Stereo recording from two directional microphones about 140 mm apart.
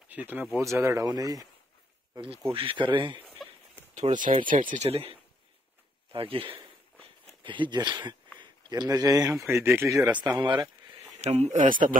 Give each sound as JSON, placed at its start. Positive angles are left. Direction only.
{"t": 0.1, "sound": "speech", "side_deg": -10}
{"t": 2.5, "sound": "speech", "side_deg": -40}
{"t": 3.4, "sound": "a sound", "side_deg": 0}
{"t": 3.9, "sound": "speech", "side_deg": -60}
{"t": 4.8, "sound": "speech", "side_deg": -45}
{"t": 10.2, "sound": "speech", "side_deg": -30}
{"t": 11.1, "sound": "speech", "side_deg": -50}